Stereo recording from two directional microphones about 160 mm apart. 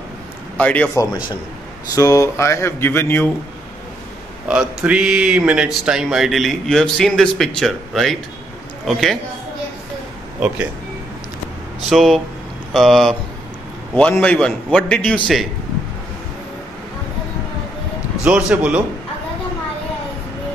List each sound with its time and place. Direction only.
0.6 s speech: 10° left (ahead or behind)
1.9 s speech: 20° left (ahead or behind)
4.5 s speech: 5° right (ahead or behind)
11.9 s speech: centre (ahead or behind)
18.2 s a man's voice: 5° right (ahead or behind)